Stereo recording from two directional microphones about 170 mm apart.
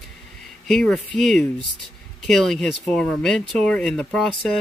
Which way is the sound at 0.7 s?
Centre (ahead or behind).